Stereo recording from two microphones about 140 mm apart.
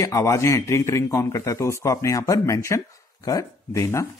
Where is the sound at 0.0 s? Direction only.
20° left (ahead or behind).